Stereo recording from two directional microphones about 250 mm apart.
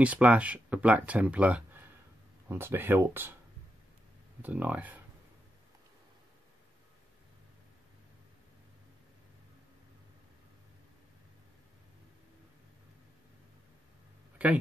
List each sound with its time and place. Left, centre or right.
0.0 s speech: centre
4.4 s speech: centre
14.4 s speech: centre